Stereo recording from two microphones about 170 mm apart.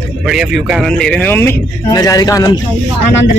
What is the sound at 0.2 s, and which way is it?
Speech, 5° right (ahead or behind).